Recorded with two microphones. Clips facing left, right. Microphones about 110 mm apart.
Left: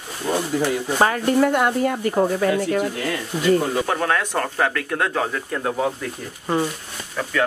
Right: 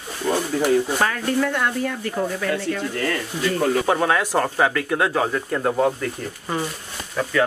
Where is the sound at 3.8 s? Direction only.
5° right (ahead or behind).